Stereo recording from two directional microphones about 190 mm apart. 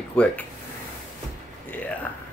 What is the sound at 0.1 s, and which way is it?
Speech, 10° left (ahead or behind).